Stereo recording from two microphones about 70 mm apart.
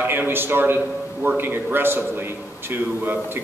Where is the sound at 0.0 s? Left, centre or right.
Right.